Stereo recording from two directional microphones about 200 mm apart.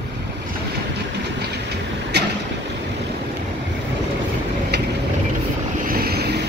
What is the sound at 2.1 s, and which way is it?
Boat, 55° right (ahead or behind).